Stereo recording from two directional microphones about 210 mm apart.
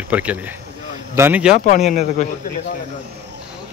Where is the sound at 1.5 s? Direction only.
35° left (ahead or behind).